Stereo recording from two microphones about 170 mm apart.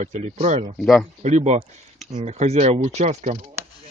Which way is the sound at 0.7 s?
Centre (ahead or behind).